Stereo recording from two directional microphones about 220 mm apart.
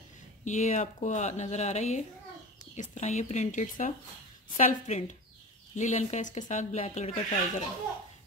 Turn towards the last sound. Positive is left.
turn(degrees=30)  # may be behind; listen again after turning